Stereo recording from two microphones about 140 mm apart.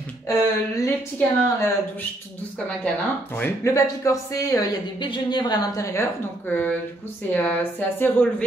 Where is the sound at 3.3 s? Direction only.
20° left (ahead or behind).